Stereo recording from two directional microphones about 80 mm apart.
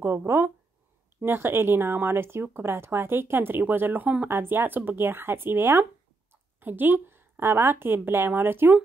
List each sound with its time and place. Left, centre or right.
0.0 s speech: right